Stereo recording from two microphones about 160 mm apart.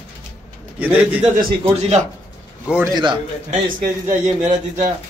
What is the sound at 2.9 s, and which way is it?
Speech, 30° right (ahead or behind).